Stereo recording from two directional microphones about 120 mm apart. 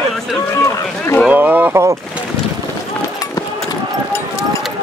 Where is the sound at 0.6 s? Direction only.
25° left (ahead or behind).